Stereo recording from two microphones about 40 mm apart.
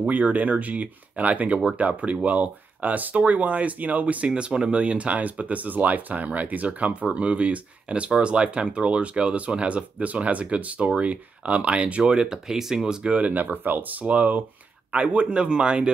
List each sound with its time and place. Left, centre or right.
0.1 s speech: right
4.5 s speech: right
12.0 s speech: centre
13.1 s speech: right
13.4 s speech: right